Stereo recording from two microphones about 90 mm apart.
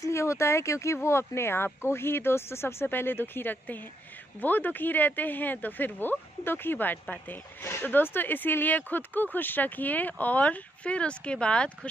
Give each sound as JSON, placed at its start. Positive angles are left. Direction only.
{"t": 0.0, "sound": "speech", "side_deg": 30}